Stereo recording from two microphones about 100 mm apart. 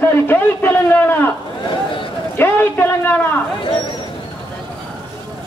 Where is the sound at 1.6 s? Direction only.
55° left (ahead or behind).